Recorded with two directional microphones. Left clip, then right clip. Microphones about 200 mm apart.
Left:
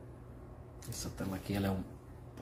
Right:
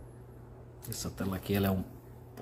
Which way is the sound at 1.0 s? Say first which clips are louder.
Right 4 dB; 30° right (ahead or behind).